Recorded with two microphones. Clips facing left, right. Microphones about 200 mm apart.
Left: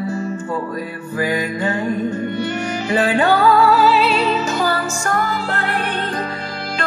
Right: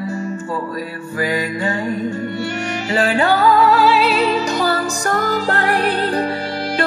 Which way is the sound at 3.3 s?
Centre (ahead or behind).